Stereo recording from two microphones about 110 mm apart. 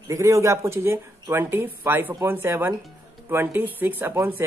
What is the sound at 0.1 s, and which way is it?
Speech, 30° right (ahead or behind).